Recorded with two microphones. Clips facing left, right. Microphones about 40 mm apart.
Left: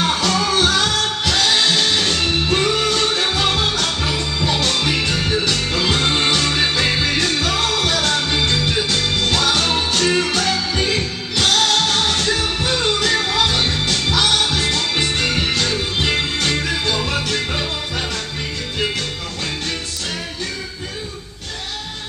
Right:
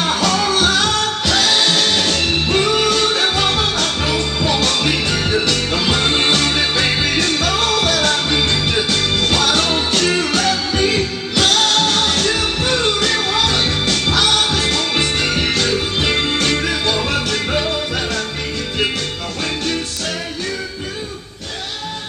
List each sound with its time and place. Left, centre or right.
2.1 s music: centre
5.2 s music: right
13.0 s music: centre
15.1 s music: centre